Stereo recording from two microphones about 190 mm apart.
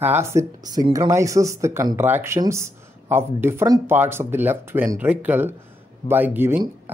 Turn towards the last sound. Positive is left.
turn(degrees=-10)  # may be behind; listen again after turning